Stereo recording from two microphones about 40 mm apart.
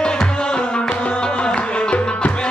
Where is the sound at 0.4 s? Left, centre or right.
Left.